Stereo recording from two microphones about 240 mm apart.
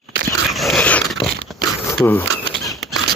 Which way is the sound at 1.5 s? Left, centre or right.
Centre.